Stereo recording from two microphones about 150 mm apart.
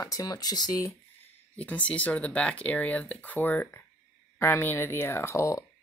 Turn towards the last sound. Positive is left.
turn(degrees=20)  # may be behind; listen again after turning